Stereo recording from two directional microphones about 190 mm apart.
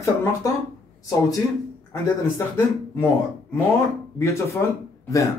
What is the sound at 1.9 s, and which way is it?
A man's voice, 15° left (ahead or behind).